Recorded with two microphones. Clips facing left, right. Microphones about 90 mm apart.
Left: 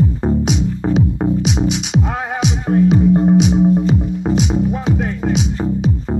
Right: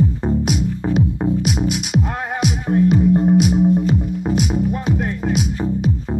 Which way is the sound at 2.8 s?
5° left (ahead or behind).